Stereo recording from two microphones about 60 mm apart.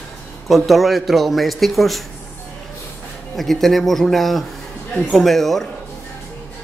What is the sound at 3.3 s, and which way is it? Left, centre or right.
A man's voice, centre.